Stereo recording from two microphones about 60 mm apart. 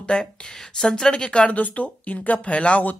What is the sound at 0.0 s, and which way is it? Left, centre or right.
Speech, centre.